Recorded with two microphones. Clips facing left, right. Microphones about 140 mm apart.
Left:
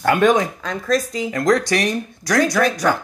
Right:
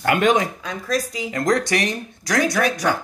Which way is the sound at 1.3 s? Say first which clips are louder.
Left 2 dB; 20° right (ahead or behind).